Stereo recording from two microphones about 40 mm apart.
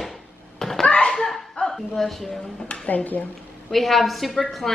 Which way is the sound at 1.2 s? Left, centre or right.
Centre.